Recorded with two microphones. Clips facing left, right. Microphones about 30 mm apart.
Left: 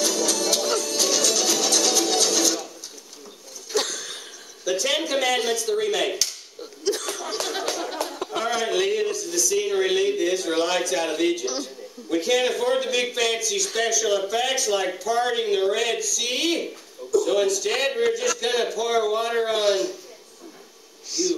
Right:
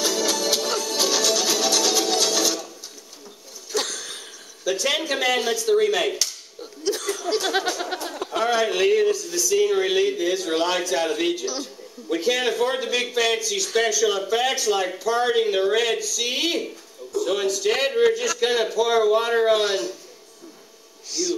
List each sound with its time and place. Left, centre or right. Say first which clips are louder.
0.0 s music: right 1 dB; centre
3.7 s a sound: left 1 dB; centre
4.6 s speech: right 1 dB; centre
5.4 s speech: right 3 dB; centre
6.0 s slap: right 1 dB; centre
7.4 s a sound: right 4 dB; right
8.2 s speech: right 5 dB; centre
11.4 s a man's voice: even; centre
12.1 s speech: even; centre
21.1 s speech: left 1 dB; centre